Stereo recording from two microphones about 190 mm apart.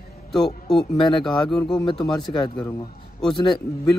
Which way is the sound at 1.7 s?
25° left (ahead or behind).